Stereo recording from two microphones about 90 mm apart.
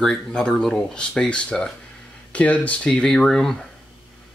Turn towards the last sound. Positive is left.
turn(degrees=5)  # may be behind; listen again after turning